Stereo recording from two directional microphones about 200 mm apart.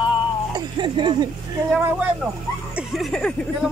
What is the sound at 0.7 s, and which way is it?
Speech, 25° right (ahead or behind).